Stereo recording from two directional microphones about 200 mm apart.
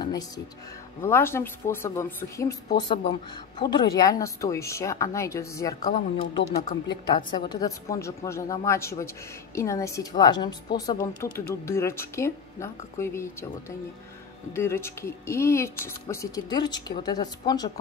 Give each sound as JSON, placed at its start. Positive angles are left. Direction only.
{"t": 1.0, "sound": "a woman's voice", "side_deg": 10}